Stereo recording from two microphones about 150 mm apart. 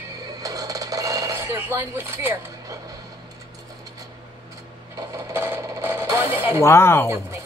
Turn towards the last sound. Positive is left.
turn(degrees=15)  # may be behind; listen again after turning